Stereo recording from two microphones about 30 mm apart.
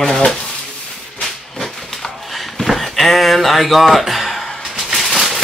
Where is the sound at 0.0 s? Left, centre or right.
Left.